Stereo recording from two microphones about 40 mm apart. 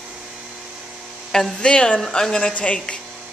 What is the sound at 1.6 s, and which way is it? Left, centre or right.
Speech, left.